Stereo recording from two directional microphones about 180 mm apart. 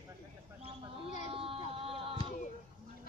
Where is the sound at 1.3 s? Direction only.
30° right (ahead or behind).